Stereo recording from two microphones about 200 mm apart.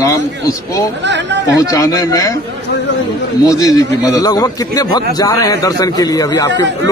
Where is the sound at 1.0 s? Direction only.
60° right (ahead or behind).